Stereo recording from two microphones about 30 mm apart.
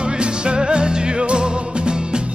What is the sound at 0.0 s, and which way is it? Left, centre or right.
Music, right.